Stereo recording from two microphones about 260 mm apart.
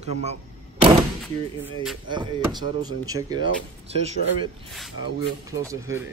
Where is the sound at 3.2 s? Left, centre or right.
Centre.